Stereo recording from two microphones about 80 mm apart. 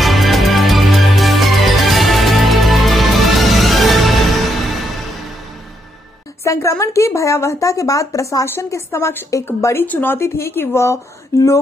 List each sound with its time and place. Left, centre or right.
0.0 s music: centre
6.4 s a woman's voice: left